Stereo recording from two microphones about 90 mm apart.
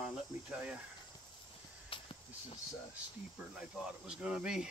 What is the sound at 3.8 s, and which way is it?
Speech, 10° right (ahead or behind).